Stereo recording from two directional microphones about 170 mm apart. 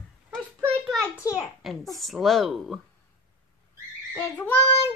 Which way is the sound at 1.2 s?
20° left (ahead or behind).